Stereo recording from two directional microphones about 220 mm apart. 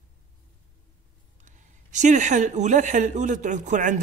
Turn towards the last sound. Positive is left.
turn(degrees=-35)  # may be behind; listen again after turning